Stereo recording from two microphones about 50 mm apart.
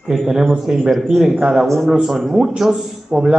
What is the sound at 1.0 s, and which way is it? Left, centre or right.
Speech, centre.